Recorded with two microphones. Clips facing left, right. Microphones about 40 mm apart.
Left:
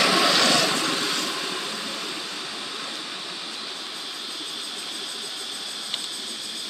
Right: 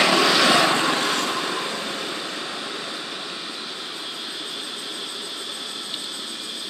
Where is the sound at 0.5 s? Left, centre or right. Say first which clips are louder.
Right 4 dB; right.